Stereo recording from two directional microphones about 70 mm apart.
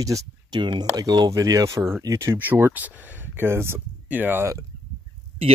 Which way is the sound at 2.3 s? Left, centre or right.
Right.